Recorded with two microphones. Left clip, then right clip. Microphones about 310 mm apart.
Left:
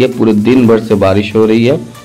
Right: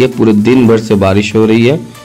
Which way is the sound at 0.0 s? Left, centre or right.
Right.